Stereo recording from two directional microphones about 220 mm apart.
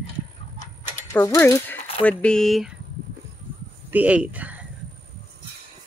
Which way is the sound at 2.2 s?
Centre (ahead or behind).